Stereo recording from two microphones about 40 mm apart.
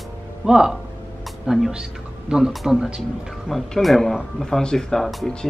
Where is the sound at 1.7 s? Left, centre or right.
Right.